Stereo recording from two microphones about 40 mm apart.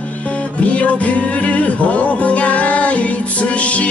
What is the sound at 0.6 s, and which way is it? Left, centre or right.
Music, left.